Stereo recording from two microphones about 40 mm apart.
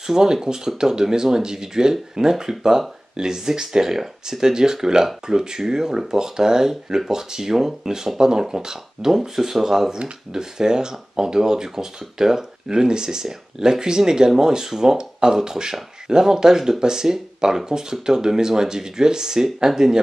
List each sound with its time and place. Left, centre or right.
0.0 s speech: centre